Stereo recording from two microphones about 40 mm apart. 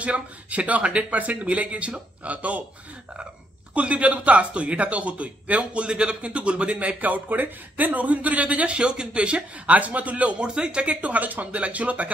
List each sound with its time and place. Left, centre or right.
0.0 s speech: right
3.7 s speech: right
10.3 s speech: right
10.9 s speech: right